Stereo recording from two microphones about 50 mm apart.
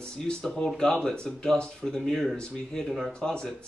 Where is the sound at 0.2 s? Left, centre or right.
Centre.